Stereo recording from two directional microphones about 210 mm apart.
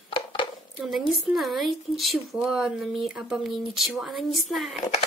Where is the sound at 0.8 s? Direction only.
Centre (ahead or behind).